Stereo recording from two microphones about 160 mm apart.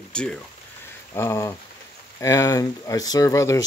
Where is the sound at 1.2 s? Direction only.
20° left (ahead or behind).